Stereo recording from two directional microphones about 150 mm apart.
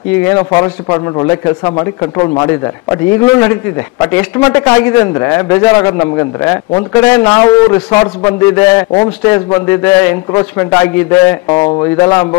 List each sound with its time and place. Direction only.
0.1 s a man's voice: 15° left (ahead or behind)
11.4 s a man's voice: 30° left (ahead or behind)